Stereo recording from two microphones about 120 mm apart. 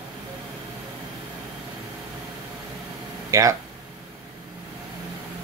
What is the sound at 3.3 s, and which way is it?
Speech, 25° right (ahead or behind).